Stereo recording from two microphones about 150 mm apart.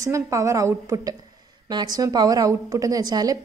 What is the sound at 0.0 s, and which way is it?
A woman's voice, 20° right (ahead or behind).